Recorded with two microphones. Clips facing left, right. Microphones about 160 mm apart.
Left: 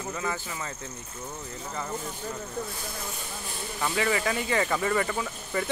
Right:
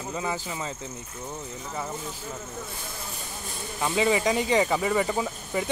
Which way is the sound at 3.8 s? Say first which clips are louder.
Right 4 dB; 20° right (ahead or behind).